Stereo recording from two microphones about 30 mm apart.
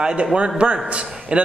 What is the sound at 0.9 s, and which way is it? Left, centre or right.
Speech, right.